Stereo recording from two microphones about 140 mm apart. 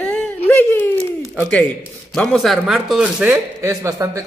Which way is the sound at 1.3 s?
10° left (ahead or behind).